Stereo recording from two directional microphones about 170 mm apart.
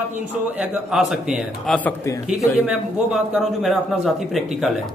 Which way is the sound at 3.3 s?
Centre (ahead or behind).